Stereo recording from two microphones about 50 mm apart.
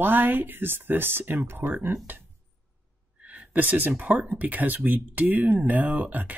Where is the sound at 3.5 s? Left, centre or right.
Right.